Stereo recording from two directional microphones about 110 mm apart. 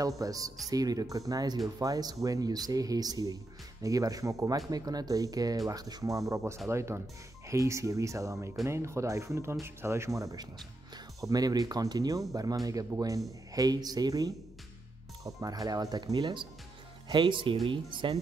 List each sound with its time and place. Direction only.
0.2 s speech: 30° right (ahead or behind); by 18.1 s 50° right (ahead or behind)